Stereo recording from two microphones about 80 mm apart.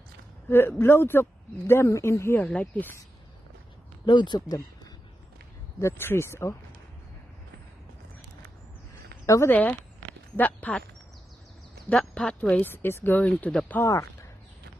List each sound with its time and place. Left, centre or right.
0.5 s speech: left
2.4 s speech: centre
4.0 s speech: left
5.8 s speech: left
9.2 s speech: left
9.5 s speech: centre
12.1 s speech: centre
12.6 s speech: left
13.2 s speech: centre